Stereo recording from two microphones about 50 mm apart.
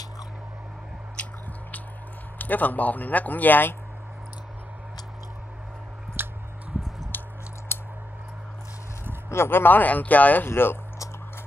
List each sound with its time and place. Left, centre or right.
1.2 s squish: left
2.3 s speech: left
6.2 s squish: right
7.1 s a sound: left
7.7 s scissors: left
9.3 s speech: left
10.5 s speech: left